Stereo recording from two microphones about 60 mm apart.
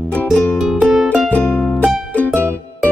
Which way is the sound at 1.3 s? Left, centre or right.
Left.